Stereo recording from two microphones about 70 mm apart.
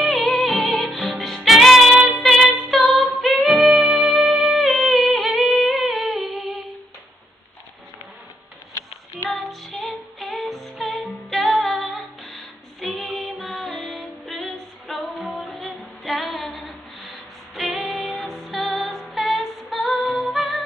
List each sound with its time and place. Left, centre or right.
0.0 s music: centre
9.3 s music: centre